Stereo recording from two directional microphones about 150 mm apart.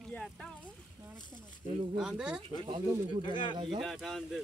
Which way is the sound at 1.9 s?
5° right (ahead or behind).